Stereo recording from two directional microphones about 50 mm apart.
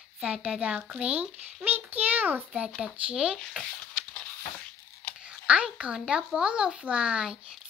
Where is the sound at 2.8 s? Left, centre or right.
Right.